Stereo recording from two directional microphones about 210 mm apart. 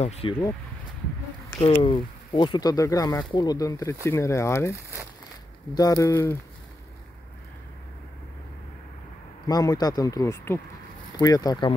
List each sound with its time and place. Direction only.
0.0 s speech: 30° left (ahead or behind)
1.6 s speech: 25° left (ahead or behind)
5.8 s speech: 15° left (ahead or behind)
9.5 s speech: 20° left (ahead or behind)